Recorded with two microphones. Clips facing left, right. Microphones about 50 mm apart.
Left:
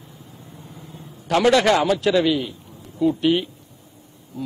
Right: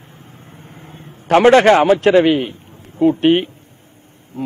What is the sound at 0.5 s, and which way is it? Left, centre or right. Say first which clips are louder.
Vehicle: right 2 dB; right.